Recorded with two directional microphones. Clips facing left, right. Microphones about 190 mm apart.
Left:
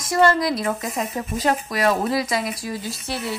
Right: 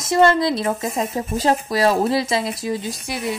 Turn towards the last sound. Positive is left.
turn(degrees=-15)  # may be behind; listen again after turning